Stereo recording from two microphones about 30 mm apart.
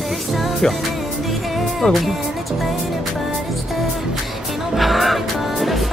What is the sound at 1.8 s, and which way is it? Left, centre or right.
Speech, left.